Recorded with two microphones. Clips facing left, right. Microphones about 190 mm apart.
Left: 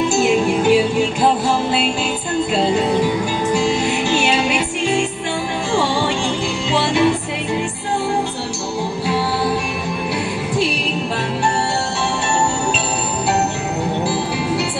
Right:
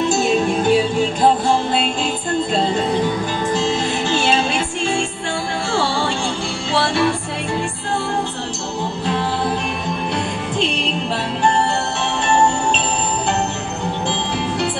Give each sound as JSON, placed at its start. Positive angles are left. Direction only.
{"t": 0.2, "sound": "music", "side_deg": 10}
{"t": 2.5, "sound": "music", "side_deg": 10}
{"t": 14.0, "sound": "music", "side_deg": 5}